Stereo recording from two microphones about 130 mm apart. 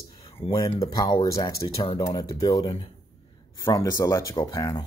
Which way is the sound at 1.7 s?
50° left (ahead or behind).